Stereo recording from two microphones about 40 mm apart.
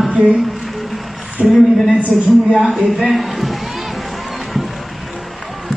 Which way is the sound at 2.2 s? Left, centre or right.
Right.